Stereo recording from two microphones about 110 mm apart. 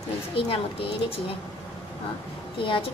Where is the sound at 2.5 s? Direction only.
50° left (ahead or behind).